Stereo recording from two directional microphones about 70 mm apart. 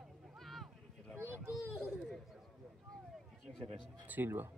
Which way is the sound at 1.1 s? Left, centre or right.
Right.